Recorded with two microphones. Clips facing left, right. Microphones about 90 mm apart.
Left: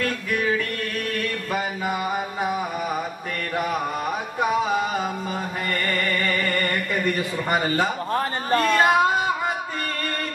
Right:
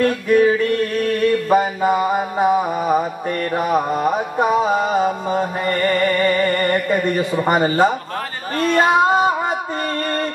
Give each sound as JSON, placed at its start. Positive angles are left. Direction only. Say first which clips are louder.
{"t": 0.0, "sound": "music", "louder": "right 10 dB", "side_deg": -30}
{"t": 1.5, "sound": "mantra", "louder": "right 10 dB", "side_deg": -35}
{"t": 3.5, "sound": "music", "louder": "right 6 dB", "side_deg": -30}
{"t": 8.7, "sound": "female singing", "louder": "right 7 dB", "side_deg": -30}